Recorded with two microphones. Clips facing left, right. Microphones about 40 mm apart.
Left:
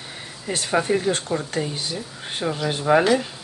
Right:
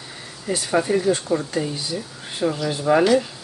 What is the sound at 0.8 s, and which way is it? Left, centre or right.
Speech, left.